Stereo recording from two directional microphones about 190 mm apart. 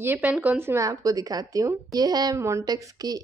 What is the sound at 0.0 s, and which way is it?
Speech, 10° right (ahead or behind).